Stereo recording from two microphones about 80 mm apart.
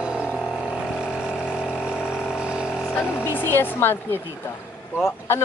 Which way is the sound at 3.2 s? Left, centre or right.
Left.